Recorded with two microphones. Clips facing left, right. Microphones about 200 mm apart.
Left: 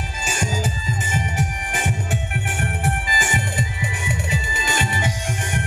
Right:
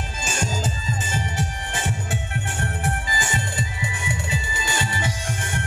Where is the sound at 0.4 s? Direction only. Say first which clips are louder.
Left 2 dB; 15° left (ahead or behind).